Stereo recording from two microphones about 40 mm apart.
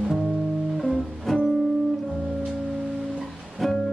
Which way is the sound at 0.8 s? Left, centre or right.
Centre.